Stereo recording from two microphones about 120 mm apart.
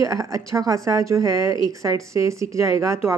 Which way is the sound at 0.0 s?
25° right (ahead or behind).